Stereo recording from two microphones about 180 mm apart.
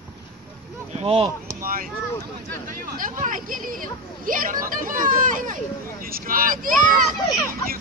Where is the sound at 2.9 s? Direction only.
45° right (ahead or behind).